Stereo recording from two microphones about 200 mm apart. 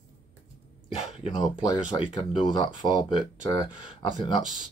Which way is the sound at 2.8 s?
20° left (ahead or behind).